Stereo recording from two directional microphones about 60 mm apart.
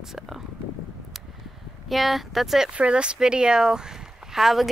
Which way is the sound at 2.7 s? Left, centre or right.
Centre.